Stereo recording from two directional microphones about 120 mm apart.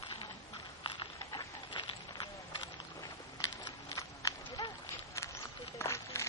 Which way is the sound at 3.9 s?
30° left (ahead or behind).